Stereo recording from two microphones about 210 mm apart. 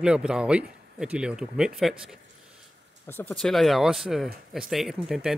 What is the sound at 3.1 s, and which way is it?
Speech, 10° left (ahead or behind).